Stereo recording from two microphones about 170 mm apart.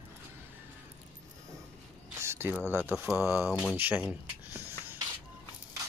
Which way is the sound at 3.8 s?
10° right (ahead or behind).